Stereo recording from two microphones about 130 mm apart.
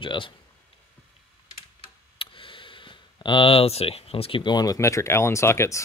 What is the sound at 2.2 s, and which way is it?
Speech, 40° left (ahead or behind).